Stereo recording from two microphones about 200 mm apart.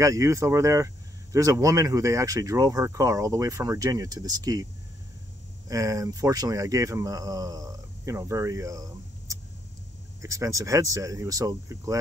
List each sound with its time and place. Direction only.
0.0 s speech: 15° right (ahead or behind)
5.7 s speech: 15° right (ahead or behind)